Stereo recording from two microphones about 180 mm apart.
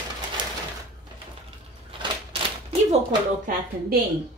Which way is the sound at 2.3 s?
35° right (ahead or behind).